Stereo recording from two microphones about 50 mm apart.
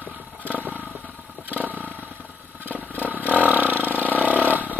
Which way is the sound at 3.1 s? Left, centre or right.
Right.